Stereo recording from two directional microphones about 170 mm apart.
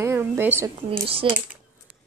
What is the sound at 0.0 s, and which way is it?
Speech, 15° right (ahead or behind).